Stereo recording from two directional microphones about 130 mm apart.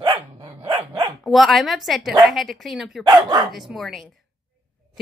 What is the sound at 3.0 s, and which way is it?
Dog, 30° right (ahead or behind).